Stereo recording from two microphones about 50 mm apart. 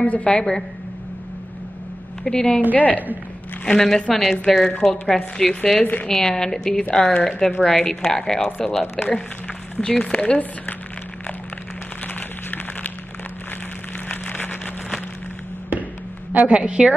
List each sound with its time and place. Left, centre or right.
0.0 s a woman's voice: left
2.2 s a woman's voice: centre
2.7 s speech: left
3.6 s a woman's voice: centre
5.8 s speech: left
6.0 s a woman's voice: centre
12.1 s a sound: left
14.0 s a sound: left
16.3 s a woman's voice: right